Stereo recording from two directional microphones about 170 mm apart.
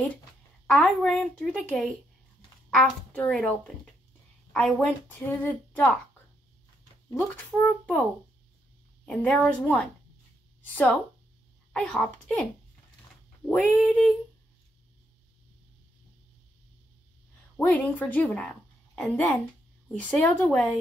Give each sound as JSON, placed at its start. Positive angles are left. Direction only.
{"t": 0.7, "sound": "speech", "side_deg": 5}
{"t": 2.7, "sound": "a child's voice", "side_deg": 5}
{"t": 7.2, "sound": "a child's voice", "side_deg": 5}
{"t": 13.7, "sound": "speech", "side_deg": 5}
{"t": 17.6, "sound": "speech", "side_deg": 10}